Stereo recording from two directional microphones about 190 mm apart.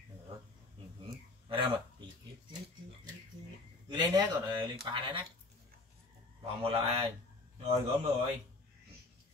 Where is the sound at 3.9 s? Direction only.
20° right (ahead or behind).